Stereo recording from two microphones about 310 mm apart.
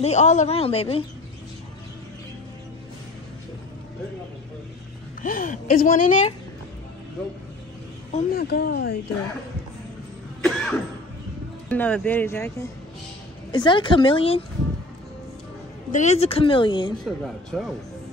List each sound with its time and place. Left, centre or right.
0.0 s speech: left
5.2 s speech: left
8.1 s speech: left
10.4 s cough: centre
11.7 s speech: centre
15.9 s speech: left
17.0 s speech: centre